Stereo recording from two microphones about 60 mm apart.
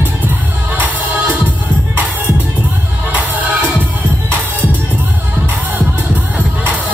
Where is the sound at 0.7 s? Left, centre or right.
Right.